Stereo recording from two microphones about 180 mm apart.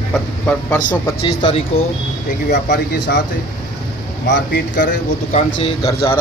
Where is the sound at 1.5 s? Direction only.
35° left (ahead or behind).